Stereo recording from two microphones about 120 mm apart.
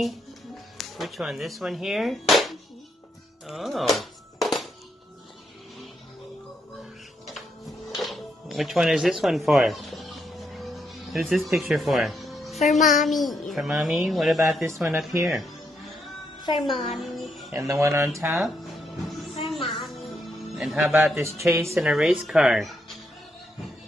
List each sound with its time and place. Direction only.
0.7 s speech: centre (ahead or behind)
3.4 s music: centre (ahead or behind)
7.2 s music: centre (ahead or behind)
12.7 s a child's voice: 90° left
13.0 s speech: centre (ahead or behind)
16.6 s a child's voice: centre (ahead or behind)
17.5 s speech: 25° right (ahead or behind)
19.5 s music: centre (ahead or behind)
21.1 s speech: 25° right (ahead or behind)
21.7 s speech: 5° right (ahead or behind)